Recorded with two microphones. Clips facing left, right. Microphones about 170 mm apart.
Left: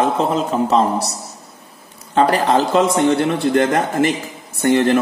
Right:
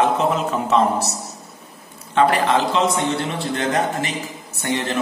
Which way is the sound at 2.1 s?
40° left (ahead or behind).